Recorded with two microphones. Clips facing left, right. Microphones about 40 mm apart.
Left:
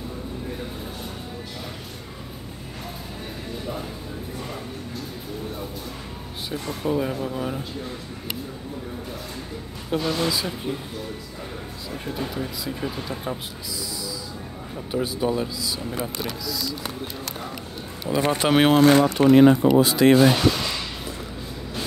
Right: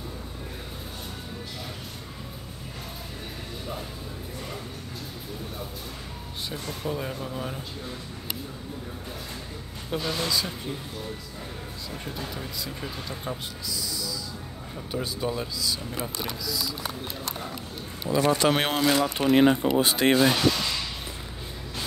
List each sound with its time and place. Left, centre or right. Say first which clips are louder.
6.5 s speech: left 7 dB; centre
9.8 s speech: left 5 dB; centre
11.9 s speech: left 6 dB; centre
14.9 s speech: left 6 dB; centre
16.4 s speech: left 2 dB; centre
18.1 s speech: left 2 dB; left
18.8 s speech: left 7 dB; left
19.3 s speech: left 5 dB; centre
19.8 s speech: left 5 dB; right
20.2 s a sound: left 4 dB; centre